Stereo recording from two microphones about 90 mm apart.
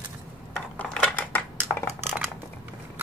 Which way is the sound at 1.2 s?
20° left (ahead or behind).